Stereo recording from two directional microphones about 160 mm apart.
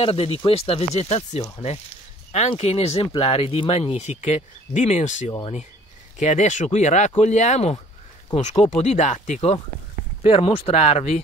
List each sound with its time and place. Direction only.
0.0 s speech: 35° left (ahead or behind)